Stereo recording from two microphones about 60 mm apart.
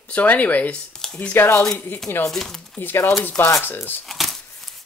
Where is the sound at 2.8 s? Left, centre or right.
Left.